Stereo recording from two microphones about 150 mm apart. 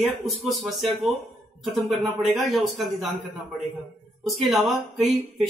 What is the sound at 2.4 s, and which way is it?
Speech, centre (ahead or behind).